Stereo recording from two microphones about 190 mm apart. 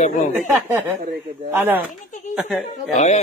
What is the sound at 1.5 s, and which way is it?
Speech, 10° right (ahead or behind).